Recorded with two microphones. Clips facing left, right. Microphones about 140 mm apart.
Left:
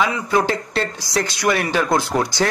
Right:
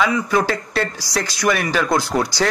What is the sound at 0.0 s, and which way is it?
Speech, 20° left (ahead or behind).